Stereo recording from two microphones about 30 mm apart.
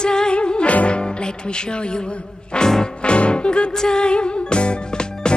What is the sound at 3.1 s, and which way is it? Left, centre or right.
Music, left.